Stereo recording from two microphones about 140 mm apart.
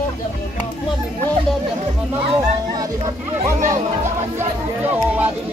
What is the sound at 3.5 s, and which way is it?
Speech, 60° right (ahead or behind).